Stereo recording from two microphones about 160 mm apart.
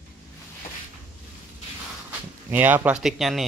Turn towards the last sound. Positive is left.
turn(degrees=0)  # may be behind; listen again after turning